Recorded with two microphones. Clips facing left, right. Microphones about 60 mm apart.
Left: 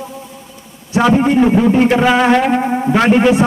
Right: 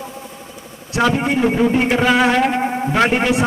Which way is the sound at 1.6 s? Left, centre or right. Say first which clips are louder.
Left 4 dB; centre.